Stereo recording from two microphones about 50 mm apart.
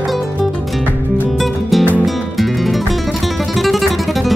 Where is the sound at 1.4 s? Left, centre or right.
Centre.